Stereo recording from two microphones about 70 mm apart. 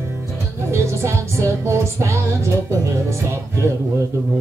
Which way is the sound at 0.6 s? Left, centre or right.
Right.